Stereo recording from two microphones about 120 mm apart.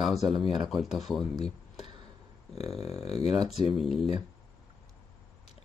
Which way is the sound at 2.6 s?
60° left (ahead or behind).